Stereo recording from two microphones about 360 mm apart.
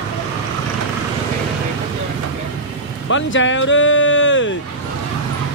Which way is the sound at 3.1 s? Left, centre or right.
Left.